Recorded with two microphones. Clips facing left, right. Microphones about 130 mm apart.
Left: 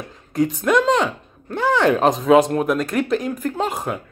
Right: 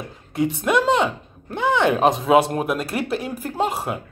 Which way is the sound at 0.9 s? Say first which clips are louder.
Even; 25° right (ahead or behind).